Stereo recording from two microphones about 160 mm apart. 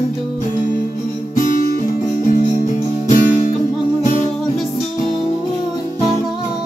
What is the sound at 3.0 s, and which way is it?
Music, 50° left (ahead or behind).